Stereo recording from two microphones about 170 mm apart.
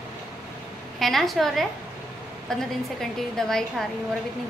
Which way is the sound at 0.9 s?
Centre (ahead or behind).